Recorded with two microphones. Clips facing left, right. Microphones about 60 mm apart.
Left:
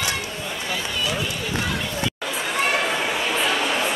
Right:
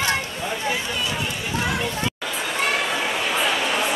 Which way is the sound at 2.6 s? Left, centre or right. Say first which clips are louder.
Left 1 dB; centre.